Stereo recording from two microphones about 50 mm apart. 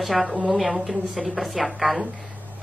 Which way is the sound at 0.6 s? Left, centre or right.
Centre.